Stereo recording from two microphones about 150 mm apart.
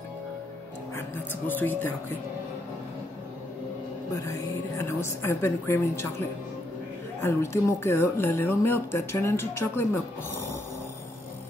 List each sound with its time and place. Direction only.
1.5 s speech: 10° left (ahead or behind)
4.1 s speech: 20° left (ahead or behind)
7.2 s speech: 20° left (ahead or behind)